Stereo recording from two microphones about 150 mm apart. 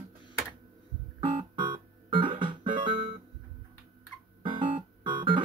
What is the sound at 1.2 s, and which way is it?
Music, 35° right (ahead or behind).